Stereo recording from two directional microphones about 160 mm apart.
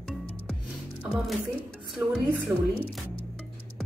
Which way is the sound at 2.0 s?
10° right (ahead or behind).